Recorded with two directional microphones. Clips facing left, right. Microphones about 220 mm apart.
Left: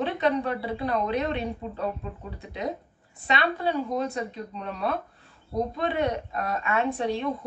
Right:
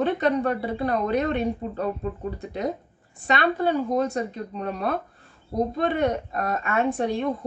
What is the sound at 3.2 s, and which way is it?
A woman's voice, 50° right (ahead or behind).